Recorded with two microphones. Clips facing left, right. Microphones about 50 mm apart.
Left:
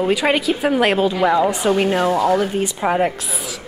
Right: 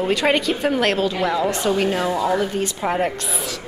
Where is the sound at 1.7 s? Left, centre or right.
Left.